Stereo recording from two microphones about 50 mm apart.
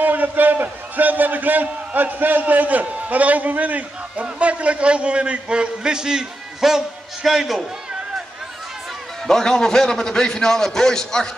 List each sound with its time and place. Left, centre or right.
0.0 s a man's voice: right; by 8.0 s centre
9.3 s a man's voice: centre